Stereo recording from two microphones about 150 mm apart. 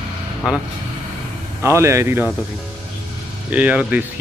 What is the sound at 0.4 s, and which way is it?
Speech, 5° right (ahead or behind).